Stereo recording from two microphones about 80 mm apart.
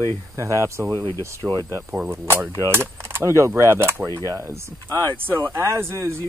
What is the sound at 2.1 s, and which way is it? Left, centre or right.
Speech, right.